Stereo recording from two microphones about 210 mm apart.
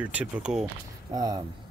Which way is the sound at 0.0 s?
5° right (ahead or behind).